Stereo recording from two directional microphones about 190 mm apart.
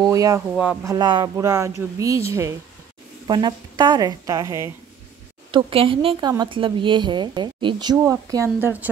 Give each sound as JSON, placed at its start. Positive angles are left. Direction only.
{"t": 0.0, "sound": "a woman's voice", "side_deg": -20}
{"t": 0.6, "sound": "a woman's voice", "side_deg": -5}
{"t": 0.9, "sound": "a woman's voice", "side_deg": -25}
{"t": 5.5, "sound": "a woman's voice", "side_deg": -25}